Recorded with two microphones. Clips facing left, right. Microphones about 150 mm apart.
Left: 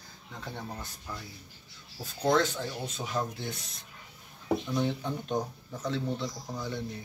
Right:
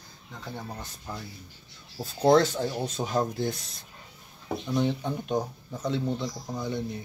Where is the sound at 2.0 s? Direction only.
35° right (ahead or behind).